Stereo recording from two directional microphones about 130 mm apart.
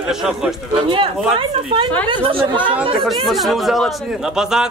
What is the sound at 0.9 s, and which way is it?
Speech, 40° right (ahead or behind).